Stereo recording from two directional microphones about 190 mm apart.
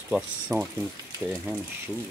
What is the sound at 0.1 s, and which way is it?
Speech, 5° right (ahead or behind).